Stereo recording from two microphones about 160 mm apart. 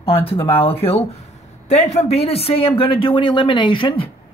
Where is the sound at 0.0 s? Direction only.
35° left (ahead or behind).